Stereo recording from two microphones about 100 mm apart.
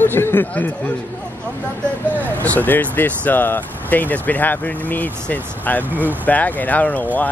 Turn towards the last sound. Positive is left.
turn(degrees=15)  # may be behind; listen again after turning